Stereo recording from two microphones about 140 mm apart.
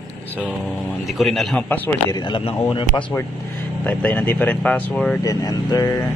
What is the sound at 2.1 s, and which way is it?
Speech, 35° left (ahead or behind).